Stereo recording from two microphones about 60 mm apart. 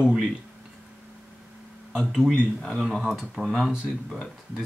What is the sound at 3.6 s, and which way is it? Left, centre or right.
Speech, centre.